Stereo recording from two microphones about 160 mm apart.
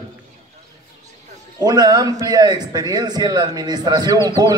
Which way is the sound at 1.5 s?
25° right (ahead or behind).